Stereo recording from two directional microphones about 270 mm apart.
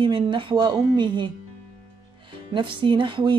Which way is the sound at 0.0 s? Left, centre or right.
Centre.